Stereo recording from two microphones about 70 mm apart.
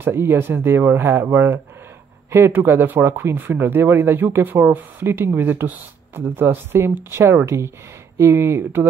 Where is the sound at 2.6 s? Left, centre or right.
Right.